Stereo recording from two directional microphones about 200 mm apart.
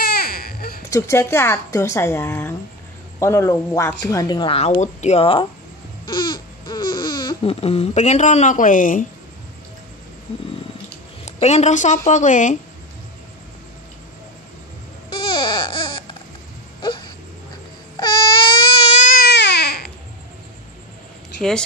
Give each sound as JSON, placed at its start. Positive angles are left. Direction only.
{"t": 0.0, "sound": "baby cry", "side_deg": 50}
{"t": 0.8, "sound": "speech", "side_deg": 15}
{"t": 6.0, "sound": "babbling", "side_deg": 20}
{"t": 11.2, "sound": "a woman's voice", "side_deg": 35}
{"t": 15.0, "sound": "baby cry", "side_deg": 25}
{"t": 16.8, "sound": "a sound", "side_deg": 25}
{"t": 17.9, "sound": "baby cry", "side_deg": 25}
{"t": 19.0, "sound": "baby cry", "side_deg": 50}
{"t": 21.4, "sound": "speech", "side_deg": 5}